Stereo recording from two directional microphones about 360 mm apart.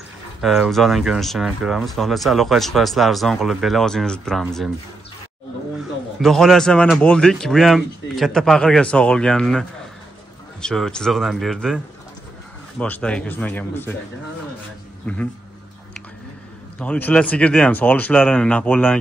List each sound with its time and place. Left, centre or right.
0.4 s speech: centre
6.2 s speech: centre
16.7 s speech: centre